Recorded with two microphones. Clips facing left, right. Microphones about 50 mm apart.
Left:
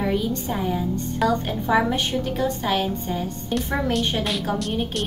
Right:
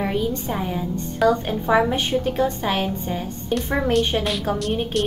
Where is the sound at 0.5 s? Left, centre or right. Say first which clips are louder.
Left 1 dB; centre.